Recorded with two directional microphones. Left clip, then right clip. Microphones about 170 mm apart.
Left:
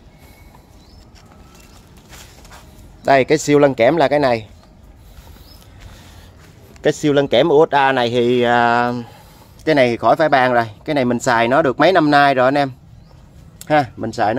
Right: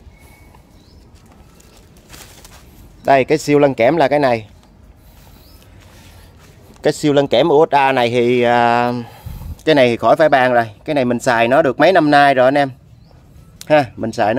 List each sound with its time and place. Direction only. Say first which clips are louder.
3.0 s speech: right 1 dB; 5° right (ahead or behind)
6.8 s speech: right 1 dB; 10° right (ahead or behind)
13.7 s speech: right 3 dB; 20° right (ahead or behind)